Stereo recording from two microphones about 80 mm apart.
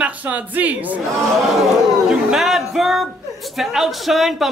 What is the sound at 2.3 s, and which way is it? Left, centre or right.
Speech, centre.